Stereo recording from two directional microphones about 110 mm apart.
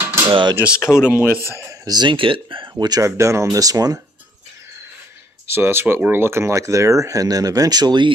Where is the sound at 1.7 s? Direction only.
35° right (ahead or behind).